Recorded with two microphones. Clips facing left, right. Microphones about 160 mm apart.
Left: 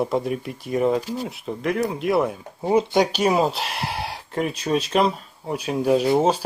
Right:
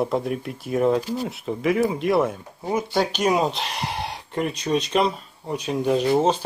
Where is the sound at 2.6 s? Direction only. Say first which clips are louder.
Left 6 dB; 25° left (ahead or behind).